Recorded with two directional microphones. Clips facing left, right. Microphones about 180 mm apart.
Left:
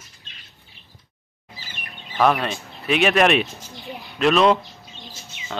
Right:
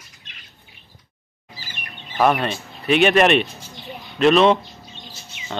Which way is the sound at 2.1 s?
5° right (ahead or behind).